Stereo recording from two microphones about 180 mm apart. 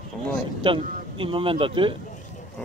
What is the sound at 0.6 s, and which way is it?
A man's voice, 30° right (ahead or behind).